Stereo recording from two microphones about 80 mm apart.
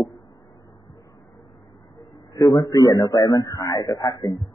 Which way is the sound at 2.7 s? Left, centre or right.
Left.